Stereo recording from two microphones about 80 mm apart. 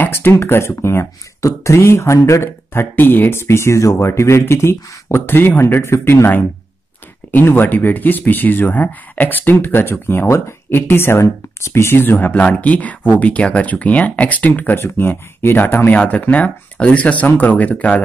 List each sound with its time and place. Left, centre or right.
0.0 s speech: left